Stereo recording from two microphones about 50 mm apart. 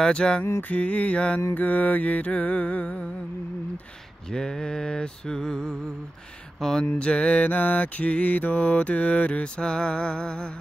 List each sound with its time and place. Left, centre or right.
0.0 s mantra: centre
0.6 s mantra: left
1.5 s mantra: left
4.3 s mantra: centre
7.0 s mantra: left